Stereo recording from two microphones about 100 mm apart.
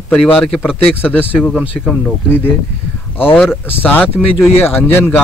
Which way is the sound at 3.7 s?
20° left (ahead or behind).